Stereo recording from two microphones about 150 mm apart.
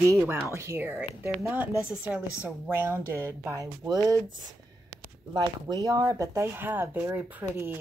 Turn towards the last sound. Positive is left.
turn(degrees=-15)  # may be behind; listen again after turning